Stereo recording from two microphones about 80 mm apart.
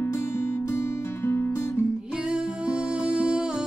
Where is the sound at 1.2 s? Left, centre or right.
Left.